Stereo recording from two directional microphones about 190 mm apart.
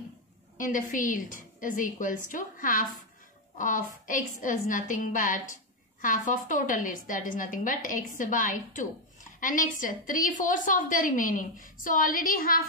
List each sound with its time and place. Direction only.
0.6 s a woman's voice: 45° left (ahead or behind)